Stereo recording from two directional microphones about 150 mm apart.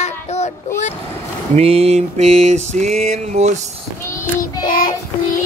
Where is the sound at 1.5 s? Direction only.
40° right (ahead or behind).